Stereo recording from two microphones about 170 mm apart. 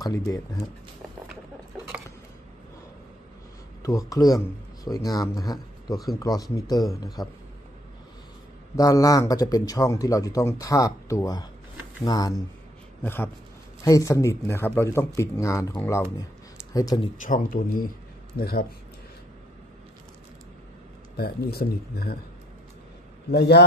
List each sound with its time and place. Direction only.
0.0 s speech: 20° left (ahead or behind)
3.8 s speech: 20° left (ahead or behind)
8.7 s speech: 20° left (ahead or behind)
17.2 s a man's voice: 55° left (ahead or behind)
21.2 s speech: 65° left (ahead or behind)
23.3 s speech: 75° left (ahead or behind)